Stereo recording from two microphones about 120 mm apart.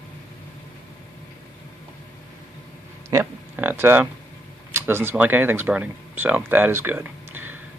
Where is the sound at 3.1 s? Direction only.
15° right (ahead or behind).